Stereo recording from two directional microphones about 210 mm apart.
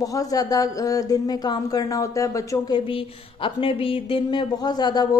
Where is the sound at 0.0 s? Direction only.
15° left (ahead or behind).